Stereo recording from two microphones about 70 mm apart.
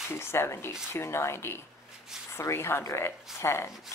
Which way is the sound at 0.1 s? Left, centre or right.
Left.